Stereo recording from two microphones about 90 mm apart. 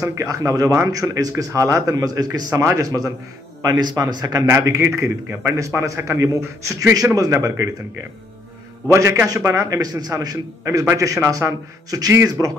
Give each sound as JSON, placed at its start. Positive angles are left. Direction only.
{"t": 0.0, "sound": "speech", "side_deg": -35}
{"t": 4.5, "sound": "speech", "side_deg": -30}
{"t": 8.9, "sound": "speech", "side_deg": -30}